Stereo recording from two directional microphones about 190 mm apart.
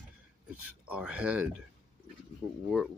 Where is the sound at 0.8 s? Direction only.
5° right (ahead or behind).